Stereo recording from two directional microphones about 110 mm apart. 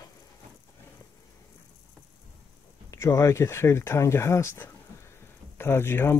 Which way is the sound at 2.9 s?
30° left (ahead or behind).